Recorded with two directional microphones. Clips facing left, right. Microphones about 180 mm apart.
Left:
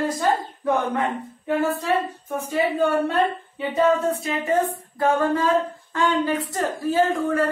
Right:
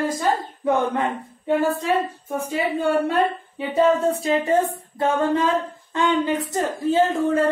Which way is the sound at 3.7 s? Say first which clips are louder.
Right 2 dB; 30° right (ahead or behind).